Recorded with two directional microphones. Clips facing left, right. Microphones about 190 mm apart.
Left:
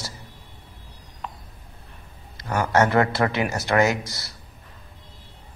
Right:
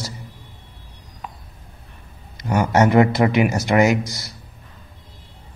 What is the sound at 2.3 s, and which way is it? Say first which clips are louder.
A man's voice: right 3 dB; 15° right (ahead or behind).